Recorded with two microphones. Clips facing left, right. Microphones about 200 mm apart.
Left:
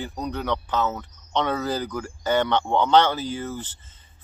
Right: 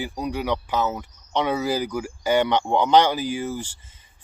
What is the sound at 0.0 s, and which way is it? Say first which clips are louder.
Speech: right 2 dB; 10° right (ahead or behind).